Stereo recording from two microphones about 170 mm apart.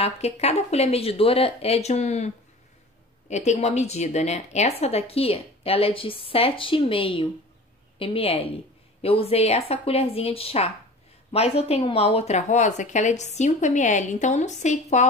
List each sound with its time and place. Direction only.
0.0 s a woman's voice: 40° left (ahead or behind)